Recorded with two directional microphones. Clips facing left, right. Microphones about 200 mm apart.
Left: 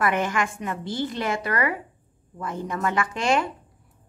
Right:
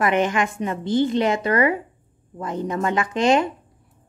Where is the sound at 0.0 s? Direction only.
20° right (ahead or behind).